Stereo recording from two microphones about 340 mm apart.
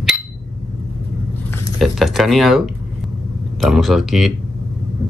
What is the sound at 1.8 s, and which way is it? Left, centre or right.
Speech, centre.